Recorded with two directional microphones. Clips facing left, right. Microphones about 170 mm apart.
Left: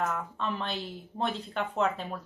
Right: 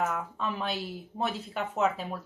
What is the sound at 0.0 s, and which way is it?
Speech, 5° right (ahead or behind).